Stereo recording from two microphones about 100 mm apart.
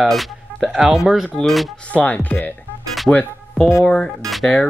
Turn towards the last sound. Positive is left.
turn(degrees=5)  # may be behind; listen again after turning